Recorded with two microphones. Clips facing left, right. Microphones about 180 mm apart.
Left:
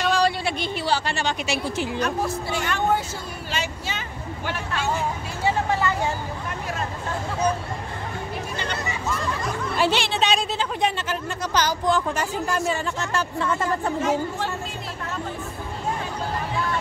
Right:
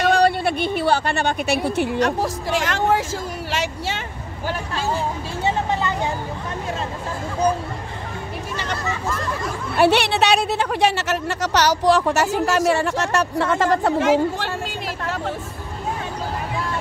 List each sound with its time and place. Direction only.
0.1 s speech: 55° right (ahead or behind); by 3.0 s 90° right
4.5 s speech: 30° right (ahead or behind)
5.7 s speech: 20° right (ahead or behind)
9.8 s speech: 65° right (ahead or behind); by 14.5 s 85° right
15.0 s music: 80° right